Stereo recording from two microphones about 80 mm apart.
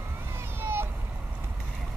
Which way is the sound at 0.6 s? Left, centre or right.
Right.